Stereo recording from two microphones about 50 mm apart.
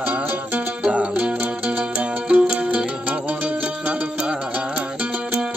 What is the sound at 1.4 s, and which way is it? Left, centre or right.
Music, right.